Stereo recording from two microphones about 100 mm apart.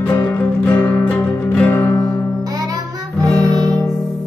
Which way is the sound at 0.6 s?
15° left (ahead or behind).